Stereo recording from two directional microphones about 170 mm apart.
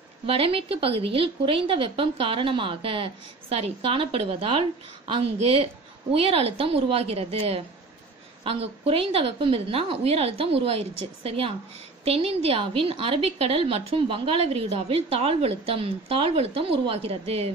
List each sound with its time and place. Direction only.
0.3 s a woman's voice: 35° right (ahead or behind)